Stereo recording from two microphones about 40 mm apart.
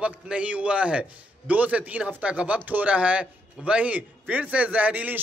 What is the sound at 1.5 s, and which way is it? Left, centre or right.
Speech, right.